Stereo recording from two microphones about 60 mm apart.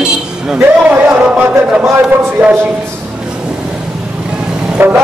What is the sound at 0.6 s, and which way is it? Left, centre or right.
Speech, right.